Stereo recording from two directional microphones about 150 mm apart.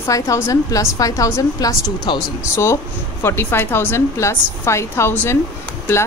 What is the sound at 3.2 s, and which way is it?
A woman's voice, 15° left (ahead or behind).